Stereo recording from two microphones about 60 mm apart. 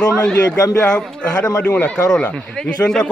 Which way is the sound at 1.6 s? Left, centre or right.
Left.